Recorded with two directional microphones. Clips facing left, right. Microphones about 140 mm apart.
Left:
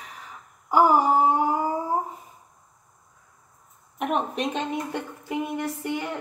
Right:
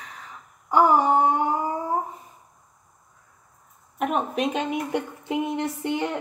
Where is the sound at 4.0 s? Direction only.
Centre (ahead or behind).